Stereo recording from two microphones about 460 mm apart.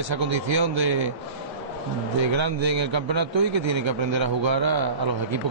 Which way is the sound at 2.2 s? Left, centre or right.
Right.